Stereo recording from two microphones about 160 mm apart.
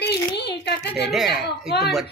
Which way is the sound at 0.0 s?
90° left.